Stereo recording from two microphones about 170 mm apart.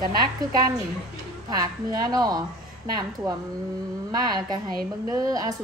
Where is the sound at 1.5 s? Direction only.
20° right (ahead or behind).